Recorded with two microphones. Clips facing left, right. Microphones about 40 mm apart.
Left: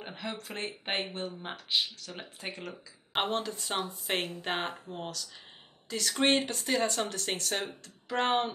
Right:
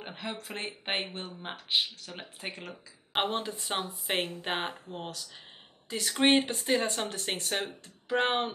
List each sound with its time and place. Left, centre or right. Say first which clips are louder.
0.0 s speech: even; centre